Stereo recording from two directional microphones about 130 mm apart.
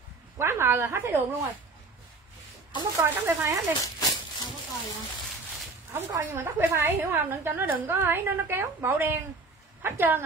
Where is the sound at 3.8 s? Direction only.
30° left (ahead or behind).